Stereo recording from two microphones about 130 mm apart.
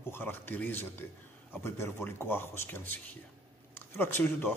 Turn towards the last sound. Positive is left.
turn(degrees=15)  # may be behind; listen again after turning